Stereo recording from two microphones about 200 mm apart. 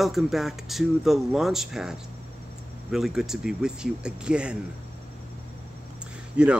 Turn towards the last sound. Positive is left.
turn(degrees=-5)  # may be behind; listen again after turning